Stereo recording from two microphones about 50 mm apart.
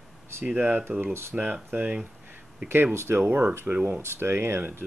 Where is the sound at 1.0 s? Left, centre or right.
Right.